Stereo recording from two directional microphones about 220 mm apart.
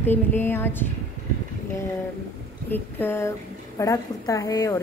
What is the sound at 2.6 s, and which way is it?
A woman's voice, 10° left (ahead or behind).